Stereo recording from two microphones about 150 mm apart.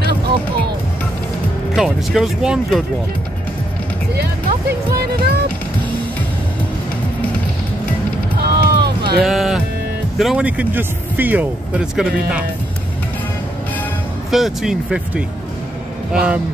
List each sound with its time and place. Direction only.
1.8 s speech: centre (ahead or behind)
4.2 s music: 90° right
8.4 s music: 90° right
9.2 s speech: centre (ahead or behind)
14.3 s speech: centre (ahead or behind)